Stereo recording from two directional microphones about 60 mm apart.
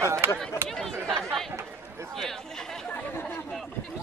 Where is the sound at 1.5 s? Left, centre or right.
Right.